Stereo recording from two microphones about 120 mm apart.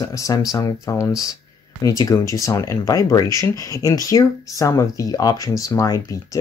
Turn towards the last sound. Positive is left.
turn(degrees=30)  # may be behind; listen again after turning